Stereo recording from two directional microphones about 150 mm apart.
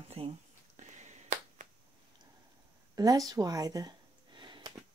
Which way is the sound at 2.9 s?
25° right (ahead or behind).